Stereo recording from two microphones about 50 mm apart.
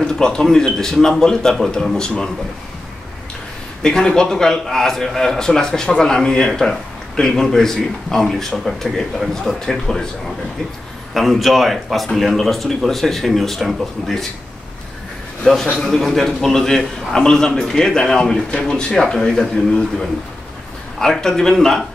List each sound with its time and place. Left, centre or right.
0.0 s a man's voice: centre
3.8 s a man's voice: centre
11.1 s speech: centre
15.5 s a man's voice: centre
15.8 s a man's voice: centre